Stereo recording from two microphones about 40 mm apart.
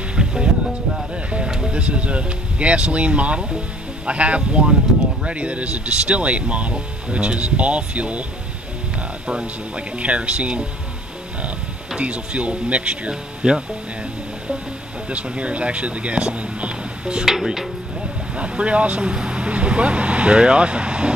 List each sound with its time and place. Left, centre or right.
0.1 s music: centre
1.7 s speech: right
9.3 s speech: right
9.9 s speech: right
12.0 s speech: right
13.1 s speech: centre
15.0 s speech: right
17.3 s a sound: centre
18.3 s speech: right